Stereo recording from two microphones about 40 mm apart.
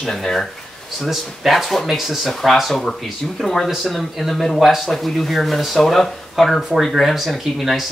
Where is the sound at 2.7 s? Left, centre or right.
Centre.